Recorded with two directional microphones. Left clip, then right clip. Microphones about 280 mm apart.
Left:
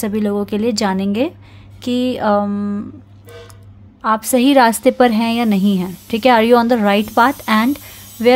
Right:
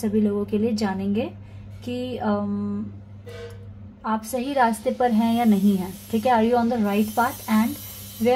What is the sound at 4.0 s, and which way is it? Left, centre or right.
A woman's voice, left.